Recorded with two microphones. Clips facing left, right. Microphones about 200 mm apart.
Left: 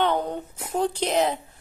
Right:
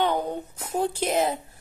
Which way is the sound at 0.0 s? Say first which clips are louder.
Left 1 dB; 10° right (ahead or behind).